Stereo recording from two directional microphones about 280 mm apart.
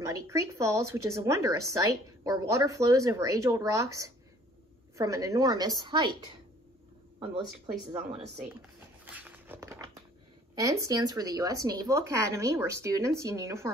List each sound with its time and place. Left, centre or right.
0.0 s a woman's voice: centre
7.2 s a woman's voice: centre
9.0 s a sound: centre
10.5 s a woman's voice: centre